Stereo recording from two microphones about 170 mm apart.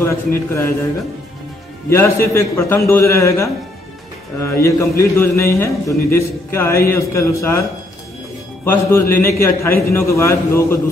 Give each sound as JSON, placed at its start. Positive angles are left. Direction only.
{"t": 0.0, "sound": "a man's voice", "side_deg": 15}
{"t": 1.9, "sound": "a man's voice", "side_deg": 15}
{"t": 8.6, "sound": "a man's voice", "side_deg": 15}